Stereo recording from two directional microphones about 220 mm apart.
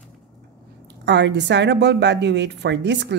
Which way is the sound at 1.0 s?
50° right (ahead or behind).